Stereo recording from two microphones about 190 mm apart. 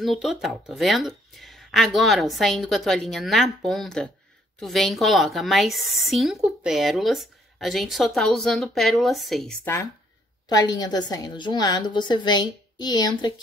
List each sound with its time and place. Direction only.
0.0 s a woman's voice: centre (ahead or behind)
10.5 s a woman's voice: 20° left (ahead or behind)